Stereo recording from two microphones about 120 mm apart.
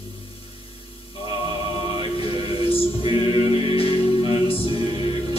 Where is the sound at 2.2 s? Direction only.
50° left (ahead or behind).